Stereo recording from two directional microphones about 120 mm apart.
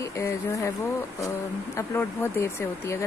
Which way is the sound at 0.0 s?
25° left (ahead or behind).